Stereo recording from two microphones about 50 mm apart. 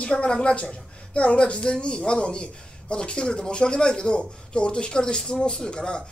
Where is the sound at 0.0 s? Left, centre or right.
Left.